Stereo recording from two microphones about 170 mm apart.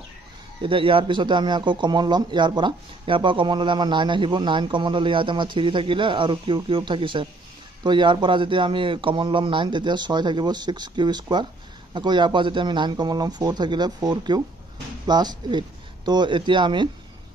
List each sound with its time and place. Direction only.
0.6 s speech: 30° right (ahead or behind)